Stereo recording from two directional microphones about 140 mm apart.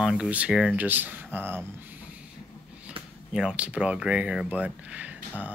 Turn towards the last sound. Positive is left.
turn(degrees=-10)  # may be behind; listen again after turning